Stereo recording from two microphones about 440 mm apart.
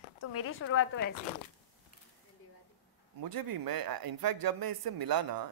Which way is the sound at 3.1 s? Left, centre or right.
Right.